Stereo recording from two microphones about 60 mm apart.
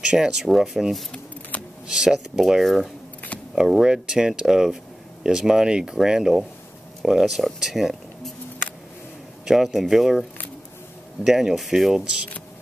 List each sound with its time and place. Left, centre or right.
0.0 s speech: centre
1.5 s camera: left
1.9 s speech: centre
9.5 s speech: centre
11.2 s speech: centre